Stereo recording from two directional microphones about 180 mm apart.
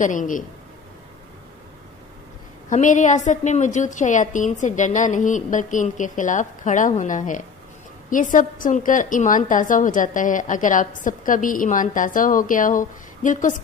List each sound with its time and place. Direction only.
0.0 s a woman's voice: 45° left (ahead or behind)
2.7 s a woman's voice: 45° left (ahead or behind)